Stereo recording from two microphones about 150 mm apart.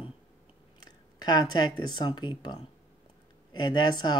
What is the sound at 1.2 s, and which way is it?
Speech, 25° left (ahead or behind).